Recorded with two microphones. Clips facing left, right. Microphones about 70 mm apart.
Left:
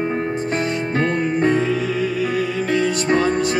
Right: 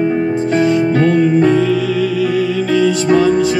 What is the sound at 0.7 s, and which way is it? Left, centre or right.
Music, left.